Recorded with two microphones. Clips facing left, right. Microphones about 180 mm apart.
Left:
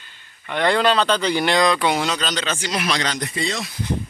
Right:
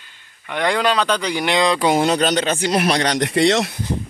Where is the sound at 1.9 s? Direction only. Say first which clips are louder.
Right 6 dB; 50° right (ahead or behind); by 3.8 s 70° right (ahead or behind).